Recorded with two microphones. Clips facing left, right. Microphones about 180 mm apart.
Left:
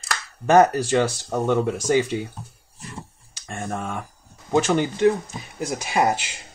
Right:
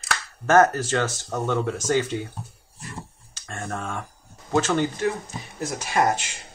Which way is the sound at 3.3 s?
15° left (ahead or behind).